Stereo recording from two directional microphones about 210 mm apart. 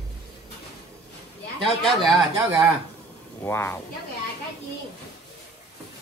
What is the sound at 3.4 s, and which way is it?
Speech, 10° left (ahead or behind).